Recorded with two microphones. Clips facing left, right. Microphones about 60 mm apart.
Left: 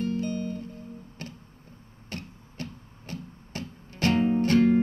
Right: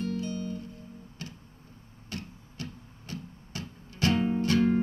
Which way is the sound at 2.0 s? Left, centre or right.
Left.